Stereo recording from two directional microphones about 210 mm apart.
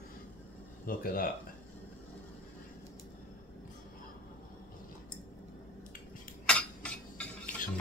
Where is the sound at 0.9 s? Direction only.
45° left (ahead or behind).